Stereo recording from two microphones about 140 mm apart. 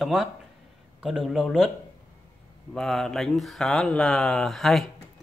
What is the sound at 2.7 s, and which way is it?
Speech, 5° left (ahead or behind).